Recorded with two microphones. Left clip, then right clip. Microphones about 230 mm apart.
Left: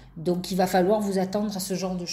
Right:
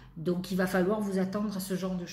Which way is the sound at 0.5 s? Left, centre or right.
Centre.